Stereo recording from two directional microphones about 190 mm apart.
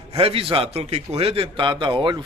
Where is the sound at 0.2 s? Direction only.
30° right (ahead or behind).